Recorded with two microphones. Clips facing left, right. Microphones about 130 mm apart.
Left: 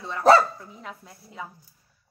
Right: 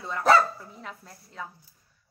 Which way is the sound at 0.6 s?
Centre (ahead or behind).